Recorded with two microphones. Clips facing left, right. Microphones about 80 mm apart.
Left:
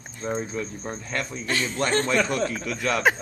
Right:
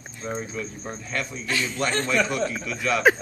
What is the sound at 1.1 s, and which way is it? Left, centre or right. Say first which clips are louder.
A man's voice: even; left.